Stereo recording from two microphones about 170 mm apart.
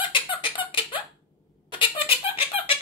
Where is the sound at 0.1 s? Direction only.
30° left (ahead or behind).